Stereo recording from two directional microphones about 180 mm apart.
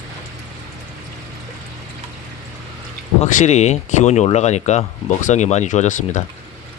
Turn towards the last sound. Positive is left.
turn(degrees=45)  # may be behind; listen again after turning